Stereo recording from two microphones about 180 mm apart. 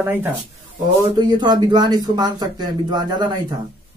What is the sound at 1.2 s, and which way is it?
Speech, 25° right (ahead or behind).